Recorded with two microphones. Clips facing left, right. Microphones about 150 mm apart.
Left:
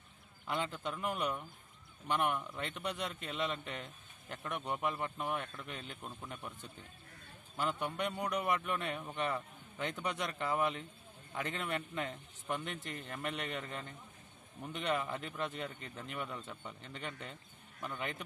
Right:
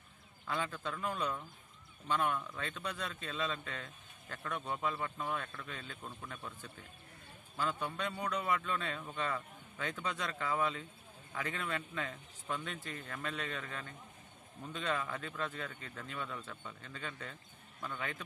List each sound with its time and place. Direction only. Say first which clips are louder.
0.5 s a man's voice: left 1 dB; 20° left (ahead or behind)